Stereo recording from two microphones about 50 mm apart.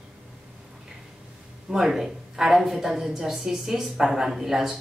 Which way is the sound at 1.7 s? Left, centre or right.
Centre.